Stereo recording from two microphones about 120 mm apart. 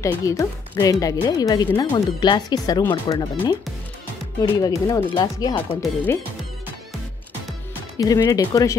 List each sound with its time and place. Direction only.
0.0 s speech: 25° left (ahead or behind)
8.0 s speech: 30° left (ahead or behind)